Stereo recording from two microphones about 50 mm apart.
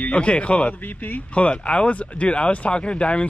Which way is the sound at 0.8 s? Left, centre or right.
Left.